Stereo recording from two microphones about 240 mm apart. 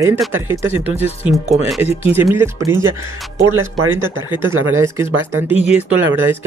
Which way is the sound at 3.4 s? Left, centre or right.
Right.